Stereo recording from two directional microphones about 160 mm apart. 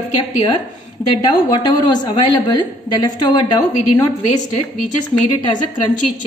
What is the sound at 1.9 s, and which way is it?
A woman's voice, 25° left (ahead or behind).